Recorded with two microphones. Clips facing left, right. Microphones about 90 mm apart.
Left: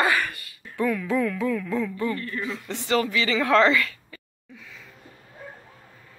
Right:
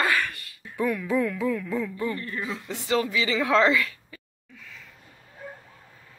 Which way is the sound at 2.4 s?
5° right (ahead or behind).